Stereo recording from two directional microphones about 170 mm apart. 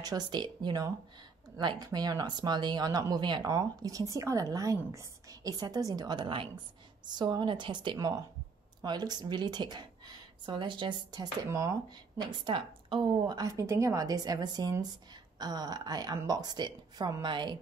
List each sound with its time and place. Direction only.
0.0 s speech: 25° right (ahead or behind)